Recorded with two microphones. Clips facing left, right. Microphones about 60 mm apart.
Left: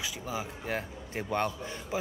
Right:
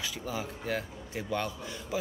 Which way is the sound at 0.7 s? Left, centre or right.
Left.